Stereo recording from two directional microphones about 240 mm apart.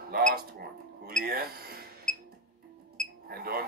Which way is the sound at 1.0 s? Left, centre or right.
Right.